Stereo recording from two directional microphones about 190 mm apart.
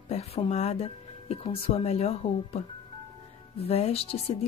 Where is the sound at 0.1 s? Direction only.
35° left (ahead or behind).